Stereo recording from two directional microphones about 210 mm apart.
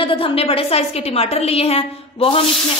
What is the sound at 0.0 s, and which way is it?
Sizzle, 25° left (ahead or behind).